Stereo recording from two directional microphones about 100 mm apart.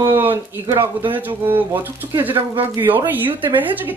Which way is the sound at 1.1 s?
20° right (ahead or behind).